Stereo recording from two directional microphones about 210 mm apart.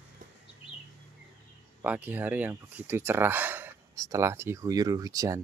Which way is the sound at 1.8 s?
5° right (ahead or behind).